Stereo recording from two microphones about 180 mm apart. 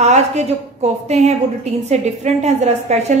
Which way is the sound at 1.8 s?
40° right (ahead or behind).